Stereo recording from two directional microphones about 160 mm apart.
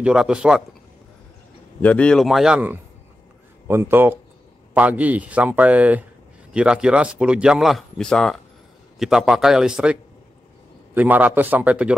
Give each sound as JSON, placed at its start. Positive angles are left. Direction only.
{"t": 0.0, "sound": "speech", "side_deg": -5}
{"t": 1.8, "sound": "speech", "side_deg": 10}
{"t": 11.0, "sound": "speech", "side_deg": -10}